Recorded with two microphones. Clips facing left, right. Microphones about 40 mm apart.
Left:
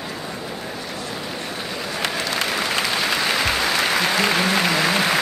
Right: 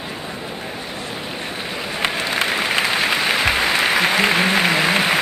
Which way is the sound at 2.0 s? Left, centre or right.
Right.